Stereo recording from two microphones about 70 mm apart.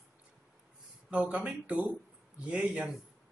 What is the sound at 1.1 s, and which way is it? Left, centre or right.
Speech, centre.